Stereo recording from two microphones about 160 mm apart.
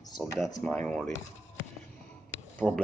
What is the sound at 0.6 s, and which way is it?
Speech, 5° left (ahead or behind).